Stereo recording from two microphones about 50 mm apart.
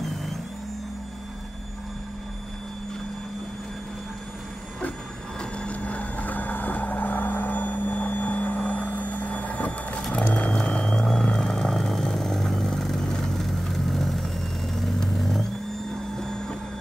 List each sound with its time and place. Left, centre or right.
5.4 s vehicle: left